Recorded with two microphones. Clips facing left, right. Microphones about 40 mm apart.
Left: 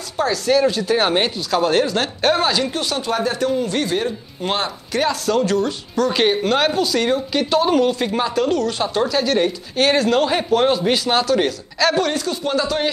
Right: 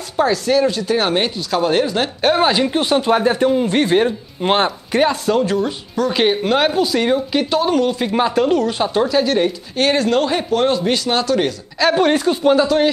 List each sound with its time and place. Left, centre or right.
0.2 s speech: centre
2.4 s speech: centre
11.9 s a man's voice: right
12.6 s speech: centre